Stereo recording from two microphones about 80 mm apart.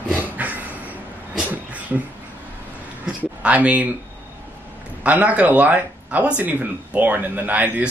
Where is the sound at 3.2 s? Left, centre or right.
Centre.